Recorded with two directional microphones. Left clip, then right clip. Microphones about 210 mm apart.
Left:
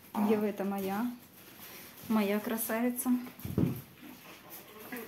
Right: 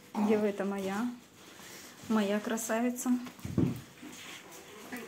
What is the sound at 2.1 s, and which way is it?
Speech, centre (ahead or behind).